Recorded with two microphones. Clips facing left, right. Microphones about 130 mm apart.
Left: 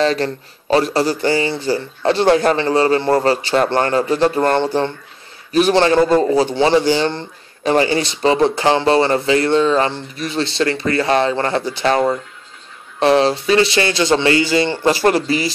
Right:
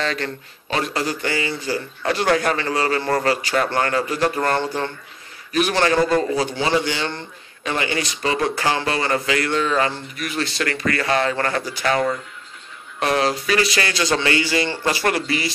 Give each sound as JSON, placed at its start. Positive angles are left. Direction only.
{"t": 0.0, "sound": "a man's voice", "side_deg": 35}